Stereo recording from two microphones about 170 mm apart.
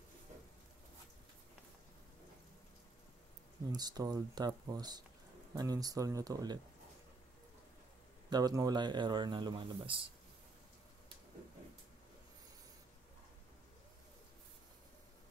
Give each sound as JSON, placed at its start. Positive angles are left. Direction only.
{"t": 3.7, "sound": "speech", "side_deg": -20}
{"t": 8.3, "sound": "speech", "side_deg": -20}